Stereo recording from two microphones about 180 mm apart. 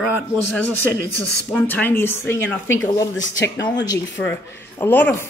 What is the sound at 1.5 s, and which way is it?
Speech, 10° left (ahead or behind).